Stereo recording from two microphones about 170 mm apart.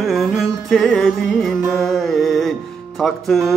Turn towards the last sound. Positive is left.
turn(degrees=0)  # may be behind; listen again after turning